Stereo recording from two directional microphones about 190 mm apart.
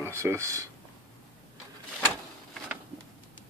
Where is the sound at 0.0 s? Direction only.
15° right (ahead or behind).